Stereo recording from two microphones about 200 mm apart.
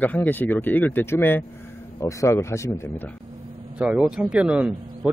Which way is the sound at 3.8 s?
5° right (ahead or behind).